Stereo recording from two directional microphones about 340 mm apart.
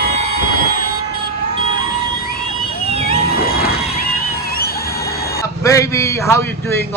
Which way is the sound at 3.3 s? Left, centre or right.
Left.